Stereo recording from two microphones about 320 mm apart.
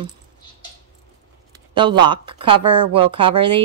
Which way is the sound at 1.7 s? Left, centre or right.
Centre.